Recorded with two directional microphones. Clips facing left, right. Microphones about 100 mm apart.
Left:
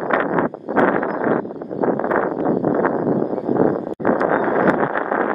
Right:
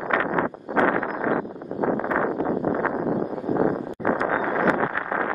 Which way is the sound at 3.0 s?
65° left (ahead or behind).